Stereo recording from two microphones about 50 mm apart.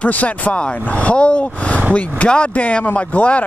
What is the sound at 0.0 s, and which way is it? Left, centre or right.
Speech, left.